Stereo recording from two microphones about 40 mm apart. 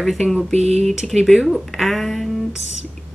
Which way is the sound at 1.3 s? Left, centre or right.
Centre.